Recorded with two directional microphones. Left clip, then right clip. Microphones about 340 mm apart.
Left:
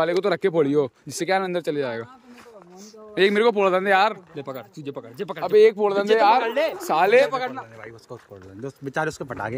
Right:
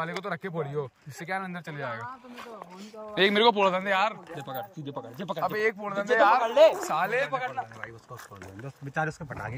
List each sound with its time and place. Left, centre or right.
0.0 s speech: left
3.2 s speech: centre
6.9 s speech: centre